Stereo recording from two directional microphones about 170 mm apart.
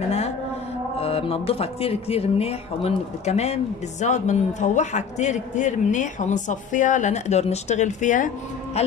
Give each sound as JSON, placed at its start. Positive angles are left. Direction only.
{"t": 0.9, "sound": "speech", "side_deg": 35}